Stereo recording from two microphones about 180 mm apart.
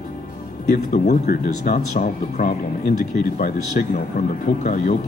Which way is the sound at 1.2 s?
50° left (ahead or behind).